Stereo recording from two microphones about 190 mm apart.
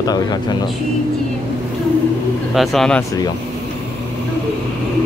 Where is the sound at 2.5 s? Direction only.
Centre (ahead or behind).